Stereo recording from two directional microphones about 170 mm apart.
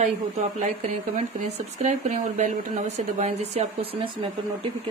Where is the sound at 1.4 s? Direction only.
45° right (ahead or behind).